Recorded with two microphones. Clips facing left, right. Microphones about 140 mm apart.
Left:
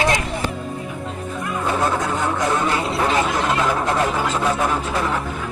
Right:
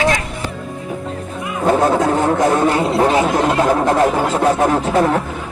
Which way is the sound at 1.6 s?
45° right (ahead or behind).